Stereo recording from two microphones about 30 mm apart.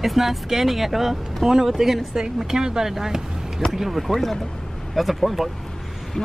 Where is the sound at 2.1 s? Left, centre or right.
Centre.